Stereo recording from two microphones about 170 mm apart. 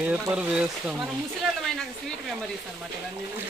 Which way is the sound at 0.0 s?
5° right (ahead or behind).